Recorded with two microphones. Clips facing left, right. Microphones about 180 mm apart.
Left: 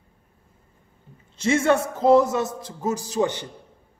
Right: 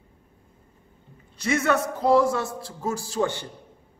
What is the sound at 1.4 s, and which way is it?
A man's voice, 25° left (ahead or behind).